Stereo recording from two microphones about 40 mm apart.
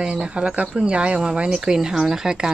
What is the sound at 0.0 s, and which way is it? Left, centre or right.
Speech, right.